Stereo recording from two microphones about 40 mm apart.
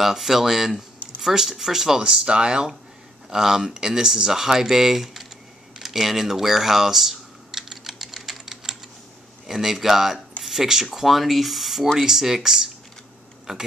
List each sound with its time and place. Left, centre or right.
0.0 s speech: centre
2.0 s speech: right
5.8 s typing: centre
9.5 s speech: centre